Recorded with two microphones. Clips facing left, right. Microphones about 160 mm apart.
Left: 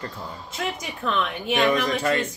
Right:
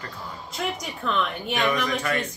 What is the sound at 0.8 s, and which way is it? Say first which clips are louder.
Speech: left 1 dB; centre (ahead or behind).